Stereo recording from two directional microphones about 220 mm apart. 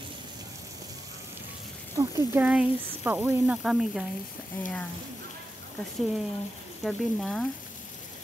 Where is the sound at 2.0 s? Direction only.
10° right (ahead or behind).